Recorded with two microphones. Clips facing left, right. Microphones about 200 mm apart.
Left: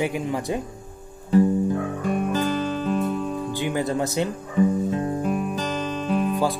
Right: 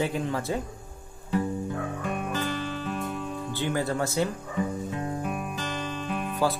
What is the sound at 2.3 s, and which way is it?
Music, 40° left (ahead or behind).